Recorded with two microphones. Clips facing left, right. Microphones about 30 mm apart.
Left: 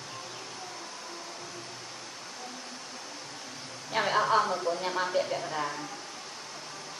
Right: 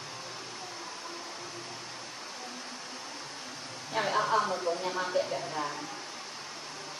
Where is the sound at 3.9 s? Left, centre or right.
Left.